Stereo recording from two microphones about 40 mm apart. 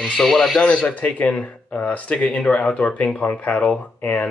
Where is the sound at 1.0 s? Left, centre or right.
Left.